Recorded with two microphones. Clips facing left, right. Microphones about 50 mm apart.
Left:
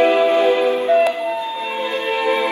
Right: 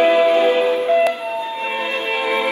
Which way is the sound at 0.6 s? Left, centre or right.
Left.